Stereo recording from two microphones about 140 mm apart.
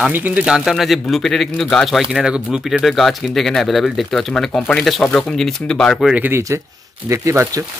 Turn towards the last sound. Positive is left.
turn(degrees=-20)  # may be behind; listen again after turning